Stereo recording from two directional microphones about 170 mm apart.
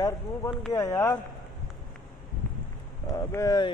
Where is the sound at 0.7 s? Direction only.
20° left (ahead or behind).